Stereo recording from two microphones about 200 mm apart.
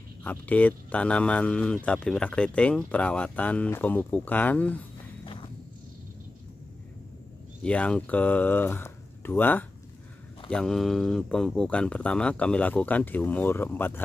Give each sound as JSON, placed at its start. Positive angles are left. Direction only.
{"t": 0.2, "sound": "speech", "side_deg": 5}
{"t": 5.2, "sound": "walk", "side_deg": 25}
{"t": 7.6, "sound": "speech", "side_deg": 5}